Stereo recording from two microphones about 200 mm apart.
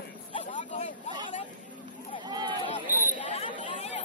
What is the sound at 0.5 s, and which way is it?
Vehicle, 35° left (ahead or behind).